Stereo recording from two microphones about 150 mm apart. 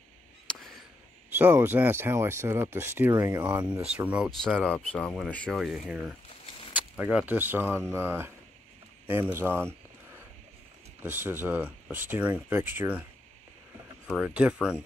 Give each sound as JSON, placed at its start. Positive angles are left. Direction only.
{"t": 0.5, "sound": "a sound", "side_deg": 5}
{"t": 1.3, "sound": "speech", "side_deg": -15}
{"t": 4.6, "sound": "speech", "side_deg": 5}
{"t": 11.0, "sound": "speech", "side_deg": -15}
{"t": 14.2, "sound": "speech", "side_deg": -5}